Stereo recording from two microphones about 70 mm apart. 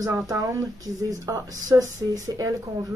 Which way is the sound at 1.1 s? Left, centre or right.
Right.